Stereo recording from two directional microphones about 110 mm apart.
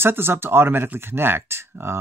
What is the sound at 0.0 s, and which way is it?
Speech, 20° right (ahead or behind).